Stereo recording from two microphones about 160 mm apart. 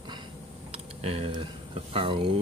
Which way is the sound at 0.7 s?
40° right (ahead or behind).